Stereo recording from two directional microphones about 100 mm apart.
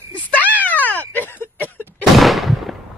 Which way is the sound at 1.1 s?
15° left (ahead or behind).